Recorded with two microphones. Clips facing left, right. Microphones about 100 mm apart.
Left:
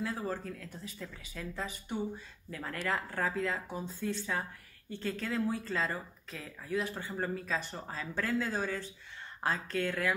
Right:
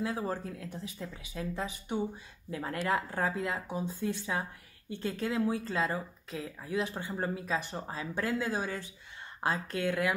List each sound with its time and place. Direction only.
0.0 s speech: 20° right (ahead or behind)